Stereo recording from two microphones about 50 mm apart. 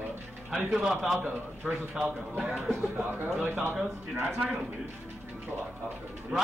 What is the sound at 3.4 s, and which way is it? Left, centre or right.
Speech, right.